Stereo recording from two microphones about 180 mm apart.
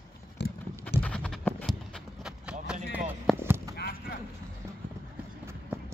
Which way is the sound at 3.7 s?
60° left (ahead or behind).